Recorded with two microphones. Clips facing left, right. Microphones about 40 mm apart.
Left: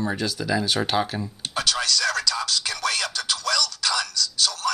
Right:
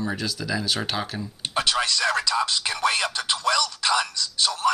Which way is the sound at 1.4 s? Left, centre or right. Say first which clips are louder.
Right 3 dB; right.